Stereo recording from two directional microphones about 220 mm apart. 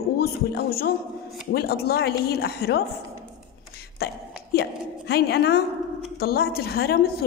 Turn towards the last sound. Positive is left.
turn(degrees=45)  # may be behind; listen again after turning